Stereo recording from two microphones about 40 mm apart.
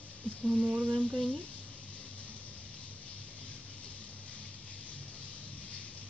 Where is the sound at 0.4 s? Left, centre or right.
Right.